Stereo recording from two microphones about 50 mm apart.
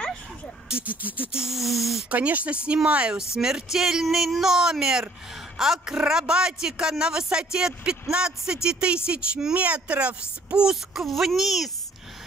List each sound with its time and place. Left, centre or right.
0.8 s a sound: right
1.3 s speech: centre
2.0 s speech: right
10.7 s speech: centre